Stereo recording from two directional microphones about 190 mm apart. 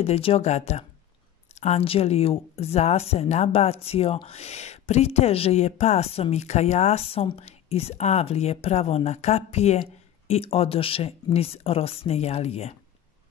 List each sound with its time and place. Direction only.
0.0 s speech: 30° left (ahead or behind)